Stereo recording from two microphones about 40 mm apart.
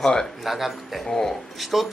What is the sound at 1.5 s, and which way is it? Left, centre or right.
Speech, centre.